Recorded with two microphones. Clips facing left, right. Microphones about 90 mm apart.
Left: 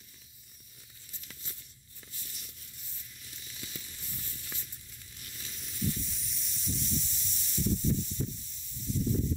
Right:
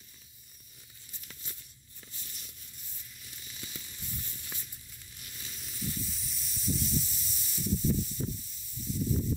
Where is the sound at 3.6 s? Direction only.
5° right (ahead or behind).